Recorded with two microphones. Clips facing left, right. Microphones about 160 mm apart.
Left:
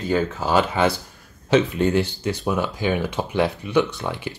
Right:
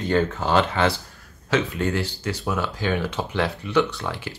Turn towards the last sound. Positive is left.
turn(degrees=15)  # may be behind; listen again after turning